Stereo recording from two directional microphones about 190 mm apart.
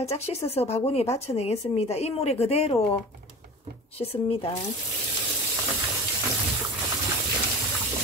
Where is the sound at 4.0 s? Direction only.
30° left (ahead or behind).